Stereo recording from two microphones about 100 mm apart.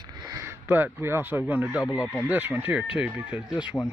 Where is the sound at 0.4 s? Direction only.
20° right (ahead or behind).